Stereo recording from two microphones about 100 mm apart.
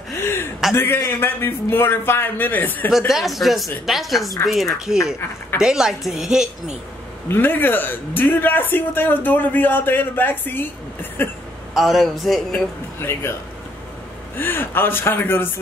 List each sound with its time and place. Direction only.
0.1 s gasp: 25° left (ahead or behind)
0.7 s a man's voice: 25° left (ahead or behind)
3.1 s a woman's voice: centre (ahead or behind)
7.2 s a man's voice: 20° left (ahead or behind)
11.7 s a woman's voice: centre (ahead or behind)
13.0 s a man's voice: 25° left (ahead or behind)
14.3 s a man's voice: 20° left (ahead or behind)